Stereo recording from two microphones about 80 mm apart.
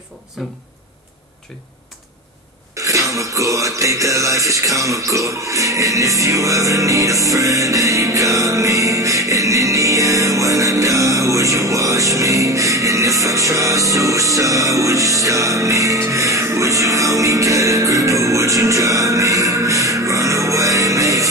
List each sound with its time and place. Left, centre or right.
0.4 s speech: centre
2.8 s cough: right
19.6 s music: right